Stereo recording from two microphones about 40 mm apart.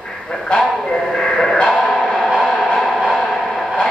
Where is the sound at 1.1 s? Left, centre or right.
Centre.